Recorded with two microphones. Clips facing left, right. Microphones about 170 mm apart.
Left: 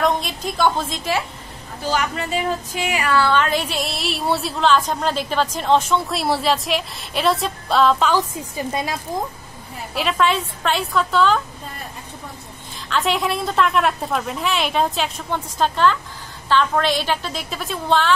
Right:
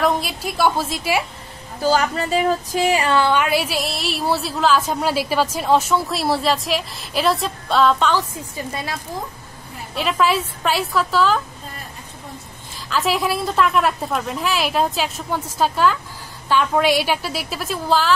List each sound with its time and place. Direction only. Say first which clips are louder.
0.0 s a woman's voice: even; 5° right (ahead or behind)
1.9 s speech: right 4 dB; 35° right (ahead or behind); by 8.1 s centre (ahead or behind)
9.9 s speech: right 1 dB; centre (ahead or behind)
12.9 s a woman's voice: right 1 dB; centre (ahead or behind)